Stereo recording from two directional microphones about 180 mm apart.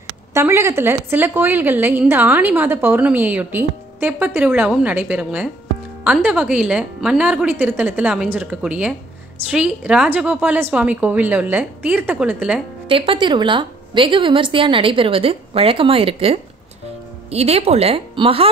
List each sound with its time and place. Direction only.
0.3 s a woman's voice: 15° right (ahead or behind)
12.8 s a woman's voice: 30° right (ahead or behind)